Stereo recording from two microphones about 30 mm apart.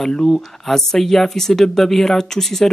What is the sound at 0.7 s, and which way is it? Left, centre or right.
Speech, centre.